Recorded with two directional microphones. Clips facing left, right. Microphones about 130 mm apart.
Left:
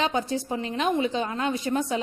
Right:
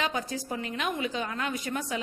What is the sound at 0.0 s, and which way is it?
A woman's voice, 25° left (ahead or behind).